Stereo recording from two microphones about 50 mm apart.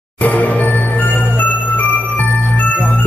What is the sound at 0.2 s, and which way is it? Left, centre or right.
Music, left.